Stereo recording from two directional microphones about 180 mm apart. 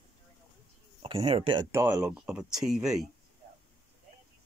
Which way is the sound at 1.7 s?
15° right (ahead or behind).